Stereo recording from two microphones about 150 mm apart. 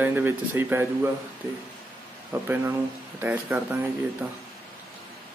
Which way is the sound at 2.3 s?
15° right (ahead or behind).